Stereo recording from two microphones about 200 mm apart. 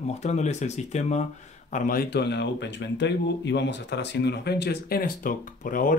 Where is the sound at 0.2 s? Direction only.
35° left (ahead or behind).